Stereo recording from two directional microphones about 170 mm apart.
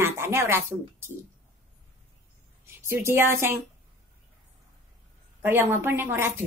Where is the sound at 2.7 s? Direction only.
15° right (ahead or behind).